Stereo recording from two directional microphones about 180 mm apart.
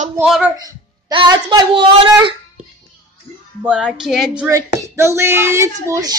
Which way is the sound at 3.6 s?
5° right (ahead or behind).